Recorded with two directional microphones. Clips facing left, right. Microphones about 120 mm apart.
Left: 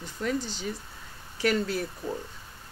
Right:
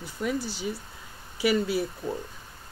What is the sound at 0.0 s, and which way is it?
Speech, 10° right (ahead or behind).